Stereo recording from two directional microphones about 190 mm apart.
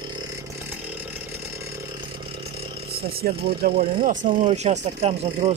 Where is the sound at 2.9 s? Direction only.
55° right (ahead or behind).